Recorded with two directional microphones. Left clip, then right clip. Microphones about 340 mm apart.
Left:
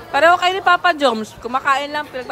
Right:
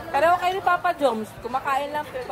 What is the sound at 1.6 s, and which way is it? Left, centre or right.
Speech, left.